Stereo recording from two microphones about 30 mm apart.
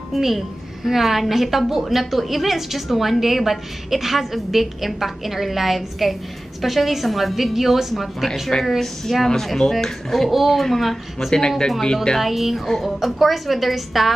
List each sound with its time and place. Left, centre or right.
0.1 s a woman's voice: centre
10.3 s a woman's voice: centre; by 12.2 s left
12.2 s a woman's voice: centre